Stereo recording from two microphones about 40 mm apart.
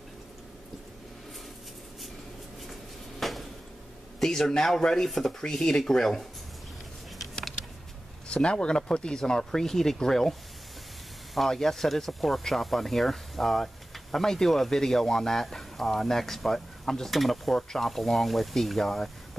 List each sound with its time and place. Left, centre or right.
2.7 s a sound: centre
4.2 s speech: centre
8.3 s speech: left
11.3 s speech: centre